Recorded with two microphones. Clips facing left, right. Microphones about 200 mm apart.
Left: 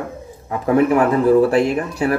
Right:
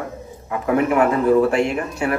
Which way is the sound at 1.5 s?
35° left (ahead or behind).